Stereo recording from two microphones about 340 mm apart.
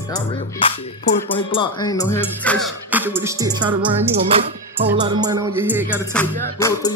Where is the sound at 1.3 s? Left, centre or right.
Centre.